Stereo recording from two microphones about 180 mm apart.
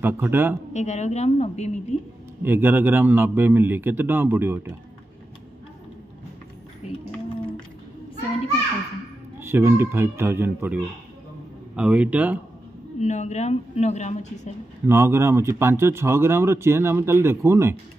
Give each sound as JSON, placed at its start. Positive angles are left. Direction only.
{"t": 0.0, "sound": "speech", "side_deg": -10}
{"t": 0.7, "sound": "speech", "side_deg": 40}
{"t": 2.4, "sound": "speech", "side_deg": -10}
{"t": 9.4, "sound": "speech", "side_deg": -15}
{"t": 13.0, "sound": "speech", "side_deg": 40}
{"t": 14.9, "sound": "speech", "side_deg": -15}